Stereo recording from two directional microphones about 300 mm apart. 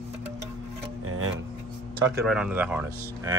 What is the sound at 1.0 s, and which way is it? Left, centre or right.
Music, right.